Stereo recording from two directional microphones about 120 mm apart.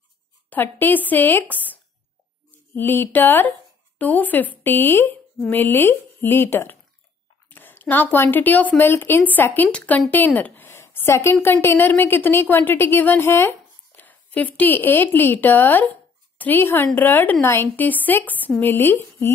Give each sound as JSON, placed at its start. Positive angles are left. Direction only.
{"t": 0.5, "sound": "a woman's voice", "side_deg": 15}